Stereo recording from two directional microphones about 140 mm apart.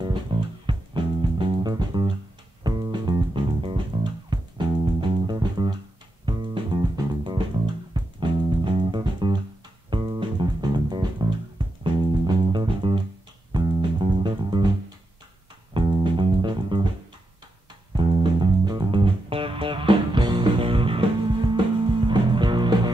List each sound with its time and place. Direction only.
0.0 s music: 35° right (ahead or behind)
15.7 s music: 35° right (ahead or behind)
17.9 s music: 35° right (ahead or behind)
22.0 s music: 35° right (ahead or behind)